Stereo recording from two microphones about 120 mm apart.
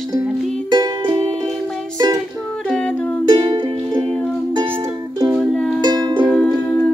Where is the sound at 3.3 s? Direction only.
40° right (ahead or behind).